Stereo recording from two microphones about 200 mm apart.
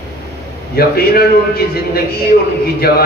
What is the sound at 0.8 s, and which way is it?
A man's voice, 50° left (ahead or behind).